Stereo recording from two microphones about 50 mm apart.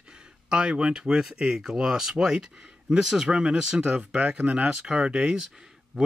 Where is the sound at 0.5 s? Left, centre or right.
Centre.